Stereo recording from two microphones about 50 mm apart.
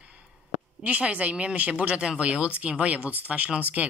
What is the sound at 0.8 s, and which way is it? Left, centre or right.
Speech, right.